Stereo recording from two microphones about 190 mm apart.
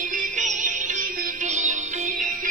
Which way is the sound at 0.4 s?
40° right (ahead or behind).